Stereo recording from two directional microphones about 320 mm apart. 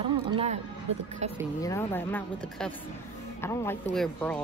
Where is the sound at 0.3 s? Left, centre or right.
Centre.